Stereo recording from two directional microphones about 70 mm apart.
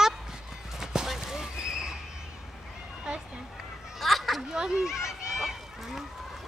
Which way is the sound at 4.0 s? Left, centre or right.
Centre.